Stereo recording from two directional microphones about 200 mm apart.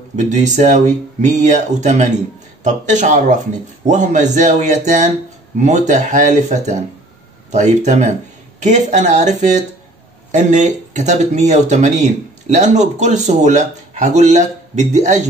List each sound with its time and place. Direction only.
0.1 s speech: 35° right (ahead or behind)